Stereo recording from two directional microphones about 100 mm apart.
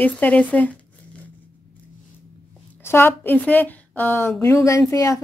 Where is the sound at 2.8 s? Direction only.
25° left (ahead or behind).